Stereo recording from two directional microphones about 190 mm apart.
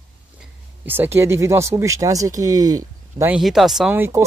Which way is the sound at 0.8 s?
10° right (ahead or behind).